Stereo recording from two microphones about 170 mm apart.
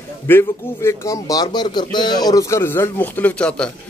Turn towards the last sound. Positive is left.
turn(degrees=5)  # may be behind; listen again after turning